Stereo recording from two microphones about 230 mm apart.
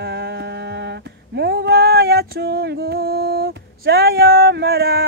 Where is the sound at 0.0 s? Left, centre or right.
Right.